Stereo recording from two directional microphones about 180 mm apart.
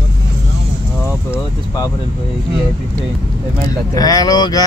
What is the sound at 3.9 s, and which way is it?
Speech, 20° left (ahead or behind).